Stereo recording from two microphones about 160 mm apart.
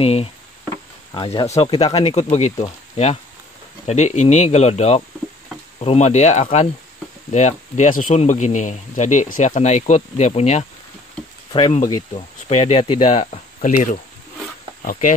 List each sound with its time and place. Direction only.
0.0 s speech: 35° left (ahead or behind)
11.5 s speech: 35° left (ahead or behind); by 15.1 s 55° left (ahead or behind)